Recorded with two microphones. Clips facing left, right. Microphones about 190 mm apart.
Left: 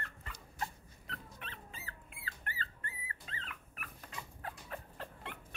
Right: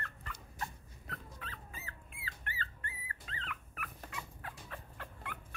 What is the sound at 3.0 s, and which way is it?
Dog, 25° left (ahead or behind).